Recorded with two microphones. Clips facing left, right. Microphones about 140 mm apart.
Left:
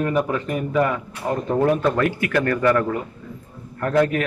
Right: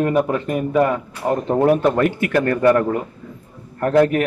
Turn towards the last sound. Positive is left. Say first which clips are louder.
# right 4 dB
turn(degrees=-30)  # may be behind; listen again after turning